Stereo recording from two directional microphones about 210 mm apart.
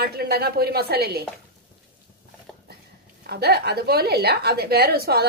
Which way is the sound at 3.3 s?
50° right (ahead or behind).